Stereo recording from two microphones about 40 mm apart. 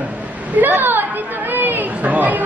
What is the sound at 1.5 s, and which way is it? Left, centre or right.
Chatter, right.